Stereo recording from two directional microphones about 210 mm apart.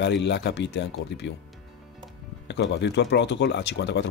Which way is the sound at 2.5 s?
55° left (ahead or behind).